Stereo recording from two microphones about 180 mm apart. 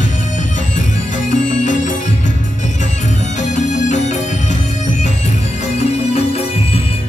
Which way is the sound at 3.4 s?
40° left (ahead or behind).